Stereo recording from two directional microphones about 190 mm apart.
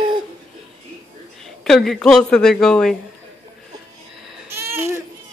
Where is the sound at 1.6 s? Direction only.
Centre (ahead or behind).